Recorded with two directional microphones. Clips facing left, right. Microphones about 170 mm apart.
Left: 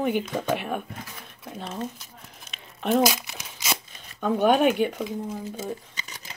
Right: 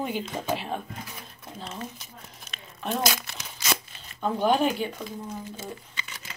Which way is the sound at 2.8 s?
70° left (ahead or behind).